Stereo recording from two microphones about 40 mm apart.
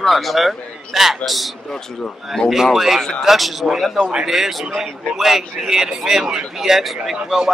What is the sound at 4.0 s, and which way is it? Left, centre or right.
Speech, right.